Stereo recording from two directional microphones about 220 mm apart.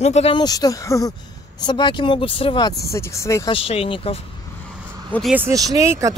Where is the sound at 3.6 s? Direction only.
25° left (ahead or behind).